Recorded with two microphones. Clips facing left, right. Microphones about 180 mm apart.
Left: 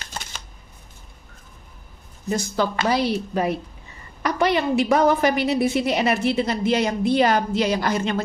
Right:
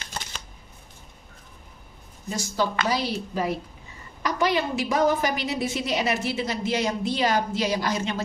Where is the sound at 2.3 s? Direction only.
55° left (ahead or behind).